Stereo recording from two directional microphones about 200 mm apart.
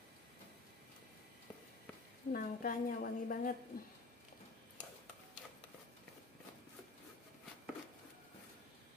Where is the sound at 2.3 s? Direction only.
45° left (ahead or behind).